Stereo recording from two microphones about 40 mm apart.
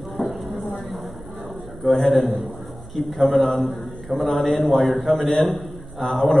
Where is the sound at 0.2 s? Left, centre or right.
Left.